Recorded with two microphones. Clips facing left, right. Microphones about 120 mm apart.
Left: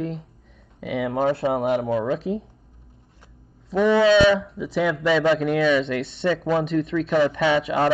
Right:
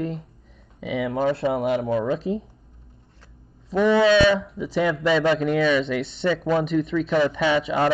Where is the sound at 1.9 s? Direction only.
5° left (ahead or behind).